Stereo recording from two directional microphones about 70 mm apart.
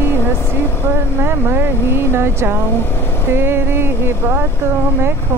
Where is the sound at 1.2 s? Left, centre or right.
Right.